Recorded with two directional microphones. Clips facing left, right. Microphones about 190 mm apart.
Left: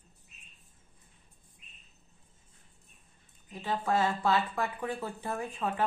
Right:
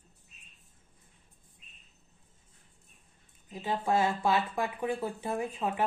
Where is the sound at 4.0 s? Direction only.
25° right (ahead or behind).